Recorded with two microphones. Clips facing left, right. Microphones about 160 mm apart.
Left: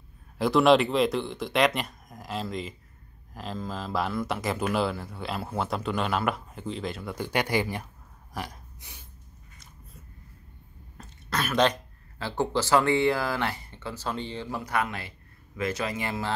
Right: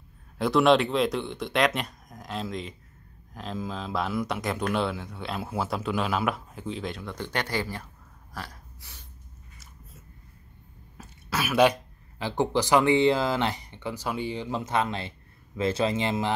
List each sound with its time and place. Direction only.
0.4 s speech: centre (ahead or behind)
8.3 s burping: 15° left (ahead or behind)
11.0 s speech: 5° right (ahead or behind)